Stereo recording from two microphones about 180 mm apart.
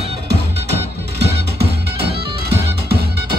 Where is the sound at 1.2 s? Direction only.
65° right (ahead or behind).